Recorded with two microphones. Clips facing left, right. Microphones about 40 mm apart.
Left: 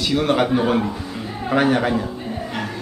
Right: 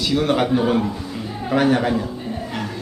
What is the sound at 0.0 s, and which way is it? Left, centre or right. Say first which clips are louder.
A man's voice: even; centre.